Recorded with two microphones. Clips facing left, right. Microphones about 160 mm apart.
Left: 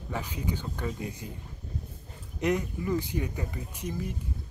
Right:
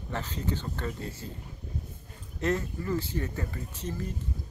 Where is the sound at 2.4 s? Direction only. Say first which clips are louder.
Left 1 dB; 15° left (ahead or behind).